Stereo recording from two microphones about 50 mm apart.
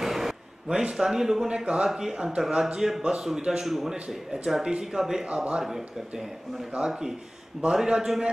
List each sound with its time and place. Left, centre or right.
0.0 s a sound: centre
0.9 s speech: centre
5.2 s a man's voice: right
5.6 s speech: centre